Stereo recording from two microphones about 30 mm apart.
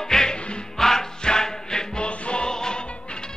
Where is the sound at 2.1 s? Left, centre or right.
Left.